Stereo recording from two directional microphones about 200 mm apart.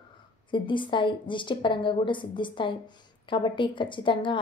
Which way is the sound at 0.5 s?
25° left (ahead or behind).